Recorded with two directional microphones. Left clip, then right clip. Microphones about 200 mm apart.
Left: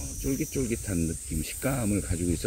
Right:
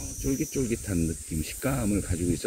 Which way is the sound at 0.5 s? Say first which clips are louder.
Right 1 dB; 15° left (ahead or behind).